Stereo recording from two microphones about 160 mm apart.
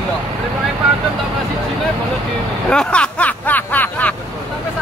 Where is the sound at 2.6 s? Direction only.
5° left (ahead or behind).